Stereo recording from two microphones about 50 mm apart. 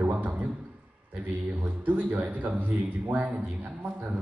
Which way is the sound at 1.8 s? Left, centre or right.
Right.